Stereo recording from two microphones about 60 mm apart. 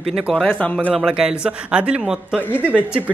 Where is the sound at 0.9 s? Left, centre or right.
Centre.